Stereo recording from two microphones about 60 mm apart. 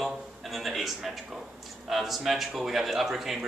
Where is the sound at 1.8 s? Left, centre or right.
Centre.